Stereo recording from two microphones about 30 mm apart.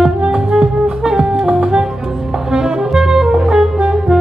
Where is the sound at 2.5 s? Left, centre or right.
Centre.